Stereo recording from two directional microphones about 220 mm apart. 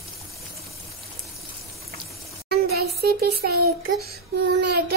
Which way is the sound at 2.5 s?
45° right (ahead or behind).